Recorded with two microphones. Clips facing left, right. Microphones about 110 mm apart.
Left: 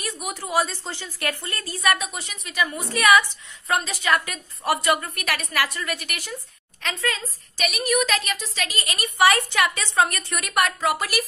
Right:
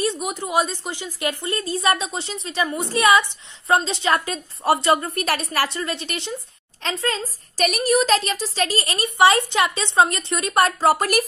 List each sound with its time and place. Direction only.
0.0 s a woman's voice: 25° right (ahead or behind)